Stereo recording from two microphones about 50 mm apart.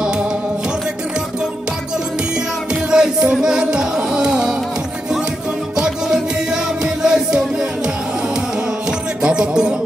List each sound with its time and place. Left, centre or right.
2.7 s music: centre
3.4 s carnatic music: centre
5.8 s music: centre
9.2 s music: centre